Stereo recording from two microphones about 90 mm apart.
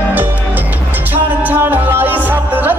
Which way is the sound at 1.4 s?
25° right (ahead or behind).